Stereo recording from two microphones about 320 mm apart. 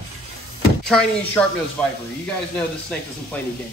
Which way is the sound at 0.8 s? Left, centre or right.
Centre.